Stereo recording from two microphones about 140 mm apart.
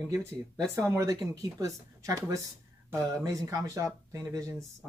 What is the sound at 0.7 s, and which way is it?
Speech, 20° right (ahead or behind).